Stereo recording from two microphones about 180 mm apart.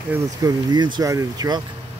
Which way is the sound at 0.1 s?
20° right (ahead or behind).